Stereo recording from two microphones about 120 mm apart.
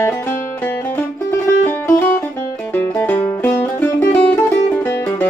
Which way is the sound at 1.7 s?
20° left (ahead or behind).